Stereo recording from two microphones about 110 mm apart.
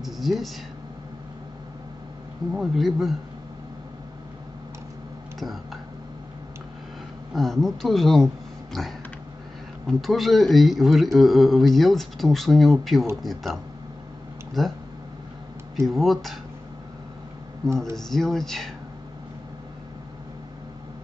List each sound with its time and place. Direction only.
0.0 s speech: centre (ahead or behind)
2.5 s speech: centre (ahead or behind)
5.4 s speech: centre (ahead or behind)
7.3 s speech: centre (ahead or behind)
15.9 s speech: centre (ahead or behind)
17.6 s speech: 40° right (ahead or behind)
17.9 s speech: 5° left (ahead or behind)